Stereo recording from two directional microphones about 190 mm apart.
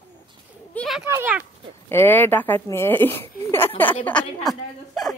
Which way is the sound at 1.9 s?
10° left (ahead or behind).